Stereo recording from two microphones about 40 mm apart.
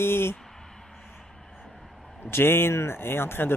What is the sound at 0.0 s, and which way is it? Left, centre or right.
Speech, left.